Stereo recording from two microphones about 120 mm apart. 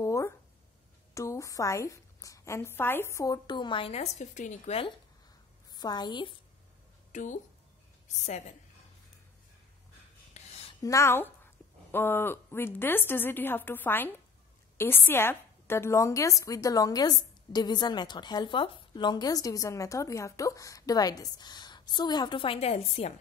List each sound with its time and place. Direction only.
0.0 s a sound: 25° left (ahead or behind)
1.1 s a woman's voice: 25° left (ahead or behind)
3.4 s a woman's voice: 40° left (ahead or behind)
3.9 s a woman's voice: 70° left (ahead or behind)
5.7 s a woman's voice: 35° left (ahead or behind)
7.1 s a woman's voice: 90° left
8.3 s a woman's voice: 75° left (ahead or behind)
10.4 s a sound: 70° left (ahead or behind)
10.8 s a woman's voice: 25° left (ahead or behind); by 23.1 s 60° left (ahead or behind)